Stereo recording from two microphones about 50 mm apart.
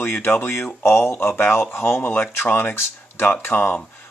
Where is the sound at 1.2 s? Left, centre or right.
Left.